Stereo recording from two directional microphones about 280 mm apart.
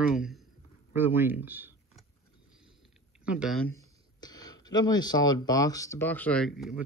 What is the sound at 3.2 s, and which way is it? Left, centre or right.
Speech, centre.